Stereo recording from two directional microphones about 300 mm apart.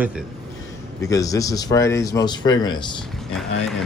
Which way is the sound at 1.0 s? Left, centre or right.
Centre.